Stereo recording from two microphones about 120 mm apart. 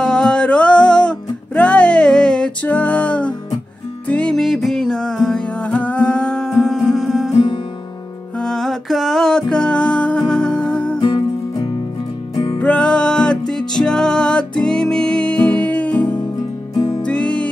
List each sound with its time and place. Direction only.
0.0 s music: 5° left (ahead or behind)
7.3 s music: 45° left (ahead or behind)
8.4 s music: 5° left (ahead or behind)
11.0 s music: 40° left (ahead or behind)
12.5 s music: 10° left (ahead or behind)